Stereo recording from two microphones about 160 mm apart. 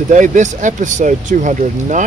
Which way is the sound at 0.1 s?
50° right (ahead or behind).